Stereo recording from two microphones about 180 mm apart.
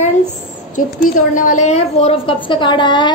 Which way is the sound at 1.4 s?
40° left (ahead or behind).